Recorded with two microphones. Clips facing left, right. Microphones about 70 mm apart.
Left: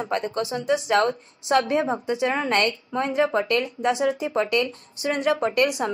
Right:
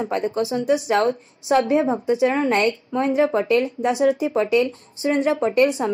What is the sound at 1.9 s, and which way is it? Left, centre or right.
Speech, centre.